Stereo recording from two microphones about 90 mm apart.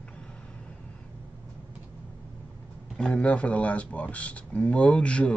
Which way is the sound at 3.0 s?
5° left (ahead or behind).